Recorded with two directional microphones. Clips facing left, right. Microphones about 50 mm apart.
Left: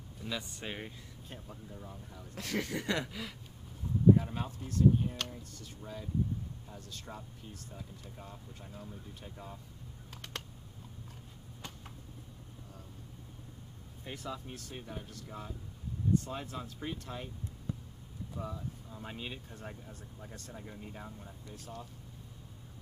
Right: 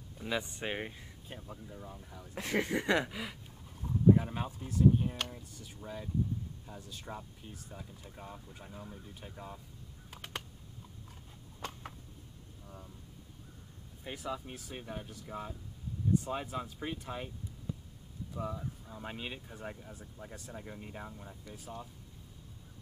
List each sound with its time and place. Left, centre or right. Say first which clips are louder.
0.2 s speech: right 4 dB; right
1.3 s speech: right 2 dB; centre
2.3 s speech: right 4 dB; right
10.1 s computer keyboard: right 1 dB; centre
14.0 s speech: right 2 dB; centre
18.4 s speech: right 3 dB; centre